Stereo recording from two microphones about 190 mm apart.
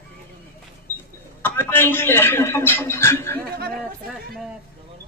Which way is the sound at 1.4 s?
10° left (ahead or behind).